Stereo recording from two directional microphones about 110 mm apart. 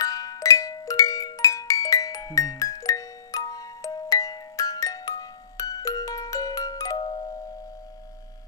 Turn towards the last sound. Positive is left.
turn(degrees=45)  # may be behind; listen again after turning